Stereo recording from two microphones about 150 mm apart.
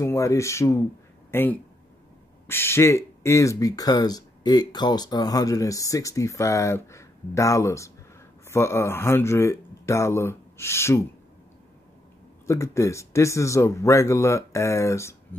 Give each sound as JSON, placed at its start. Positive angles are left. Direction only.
{"t": 0.0, "sound": "speech", "side_deg": 20}
{"t": 12.4, "sound": "speech", "side_deg": 20}